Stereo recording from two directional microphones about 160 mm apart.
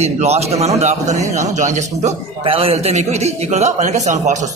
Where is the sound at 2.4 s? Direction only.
35° right (ahead or behind).